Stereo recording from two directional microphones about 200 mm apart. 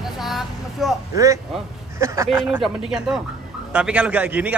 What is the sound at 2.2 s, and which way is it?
A man's voice, 5° right (ahead or behind).